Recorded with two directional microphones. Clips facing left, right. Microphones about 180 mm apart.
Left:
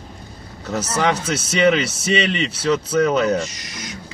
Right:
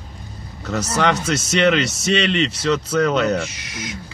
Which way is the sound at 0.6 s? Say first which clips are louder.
Right 1 dB; centre (ahead or behind).